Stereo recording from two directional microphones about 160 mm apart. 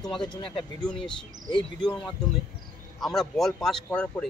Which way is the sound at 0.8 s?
5° left (ahead or behind).